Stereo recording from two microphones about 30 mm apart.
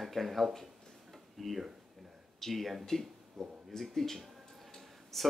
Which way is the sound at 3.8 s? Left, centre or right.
Centre.